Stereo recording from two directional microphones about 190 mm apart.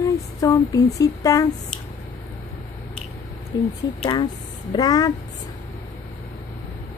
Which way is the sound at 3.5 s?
20° left (ahead or behind).